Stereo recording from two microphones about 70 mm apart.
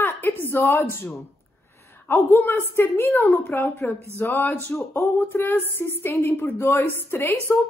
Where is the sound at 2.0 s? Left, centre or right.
Left.